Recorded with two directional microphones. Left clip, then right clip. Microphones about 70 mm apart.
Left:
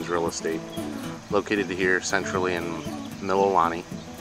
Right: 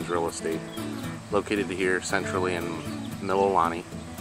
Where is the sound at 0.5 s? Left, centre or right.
Centre.